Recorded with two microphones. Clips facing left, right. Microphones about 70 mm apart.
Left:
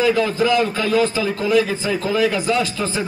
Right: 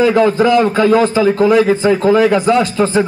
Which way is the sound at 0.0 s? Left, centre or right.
Right.